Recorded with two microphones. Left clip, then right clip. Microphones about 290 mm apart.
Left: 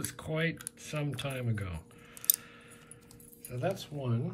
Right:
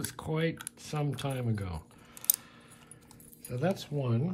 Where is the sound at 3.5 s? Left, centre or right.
Right.